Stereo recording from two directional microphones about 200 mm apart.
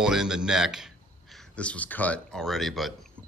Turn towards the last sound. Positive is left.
turn(degrees=0)  # may be behind; listen again after turning